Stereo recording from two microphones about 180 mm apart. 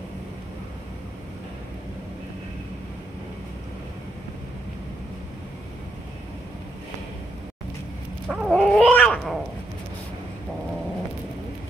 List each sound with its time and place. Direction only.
8.3 s chicken: 5° right (ahead or behind)
8.5 s cat: centre (ahead or behind)